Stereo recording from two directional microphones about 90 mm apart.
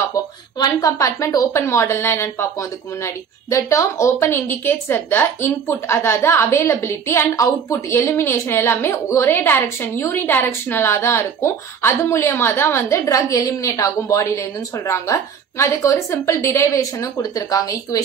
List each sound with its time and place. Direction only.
0.6 s a woman's voice: 40° left (ahead or behind)